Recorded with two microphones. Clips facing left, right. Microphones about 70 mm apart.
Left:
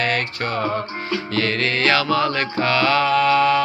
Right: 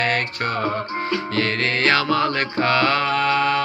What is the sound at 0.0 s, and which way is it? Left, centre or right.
Music, right.